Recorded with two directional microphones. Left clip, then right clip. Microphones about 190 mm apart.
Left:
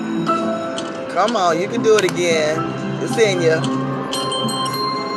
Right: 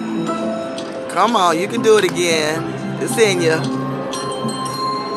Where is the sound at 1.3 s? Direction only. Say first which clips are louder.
Right 2 dB; 25° right (ahead or behind).